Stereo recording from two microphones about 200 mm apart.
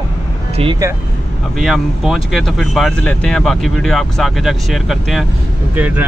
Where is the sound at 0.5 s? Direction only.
30° right (ahead or behind).